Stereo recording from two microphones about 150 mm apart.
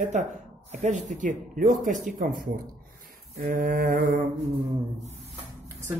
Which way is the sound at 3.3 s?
70° right (ahead or behind).